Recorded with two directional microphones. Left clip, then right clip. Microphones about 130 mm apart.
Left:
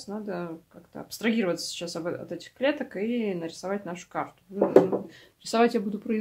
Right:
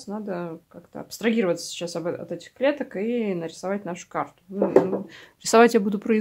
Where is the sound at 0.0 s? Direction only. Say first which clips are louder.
Right 3 dB; 50° right (ahead or behind).